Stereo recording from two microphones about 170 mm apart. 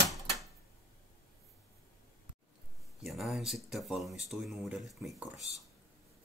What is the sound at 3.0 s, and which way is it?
Speech, centre (ahead or behind).